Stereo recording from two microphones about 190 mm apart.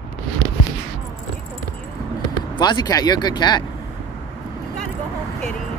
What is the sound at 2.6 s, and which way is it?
Speech, 20° left (ahead or behind).